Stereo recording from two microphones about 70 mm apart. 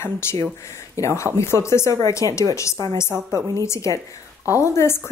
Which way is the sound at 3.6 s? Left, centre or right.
Left.